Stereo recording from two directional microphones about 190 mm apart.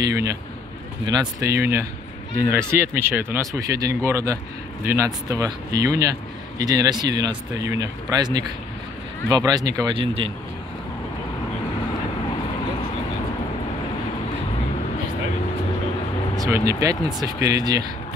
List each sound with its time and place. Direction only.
1.0 s speech: 20° right (ahead or behind)
16.3 s speech: 15° right (ahead or behind)